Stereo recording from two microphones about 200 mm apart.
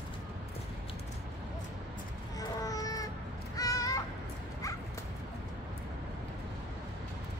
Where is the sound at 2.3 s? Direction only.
15° left (ahead or behind).